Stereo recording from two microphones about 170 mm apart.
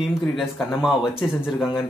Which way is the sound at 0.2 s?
Centre (ahead or behind).